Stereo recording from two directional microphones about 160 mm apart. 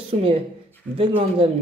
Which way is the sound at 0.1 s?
35° right (ahead or behind).